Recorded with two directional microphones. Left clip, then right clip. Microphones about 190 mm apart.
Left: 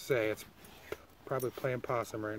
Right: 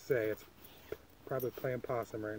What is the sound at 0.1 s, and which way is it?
Speech, 25° left (ahead or behind).